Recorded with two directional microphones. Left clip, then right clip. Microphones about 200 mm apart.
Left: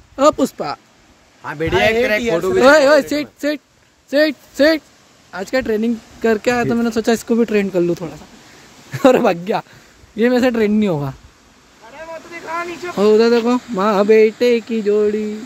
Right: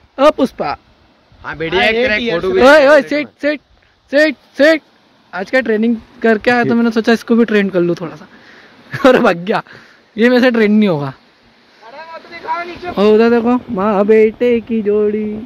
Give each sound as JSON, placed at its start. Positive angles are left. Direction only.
{"t": 0.1, "sound": "speech", "side_deg": 10}
{"t": 1.4, "sound": "speech", "side_deg": 50}
{"t": 2.6, "sound": "speech", "side_deg": 10}
{"t": 12.4, "sound": "a sound", "side_deg": 30}
{"t": 12.9, "sound": "speech", "side_deg": 10}